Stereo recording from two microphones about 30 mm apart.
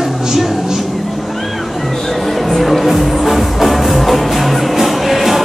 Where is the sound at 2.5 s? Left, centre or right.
Centre.